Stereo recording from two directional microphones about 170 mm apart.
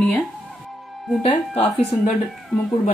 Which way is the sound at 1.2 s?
35° left (ahead or behind).